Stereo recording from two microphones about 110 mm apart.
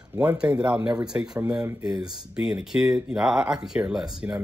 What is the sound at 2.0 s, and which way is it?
Speech, 5° right (ahead or behind).